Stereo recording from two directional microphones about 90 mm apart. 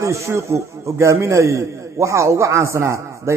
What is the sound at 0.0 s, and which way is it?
A man's voice, 35° right (ahead or behind).